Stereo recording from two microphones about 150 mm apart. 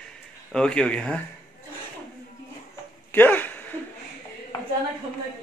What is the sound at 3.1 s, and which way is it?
Speech, 15° left (ahead or behind).